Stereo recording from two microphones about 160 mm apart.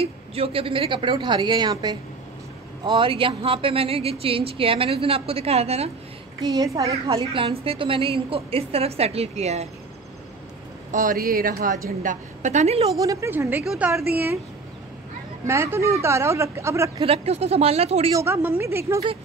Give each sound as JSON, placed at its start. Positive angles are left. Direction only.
{"t": 0.0, "sound": "a woman's voice", "side_deg": -35}
{"t": 6.4, "sound": "a child's voice", "side_deg": -20}
{"t": 7.1, "sound": "a woman's voice", "side_deg": -30}
{"t": 10.9, "sound": "a woman's voice", "side_deg": -60}
{"t": 13.0, "sound": "speech", "side_deg": -20}
{"t": 15.4, "sound": "speech", "side_deg": -15}
{"t": 17.0, "sound": "a woman's voice", "side_deg": -40}
{"t": 18.1, "sound": "speech", "side_deg": -15}